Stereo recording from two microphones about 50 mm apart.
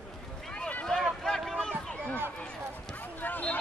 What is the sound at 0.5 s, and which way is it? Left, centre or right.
Run, left.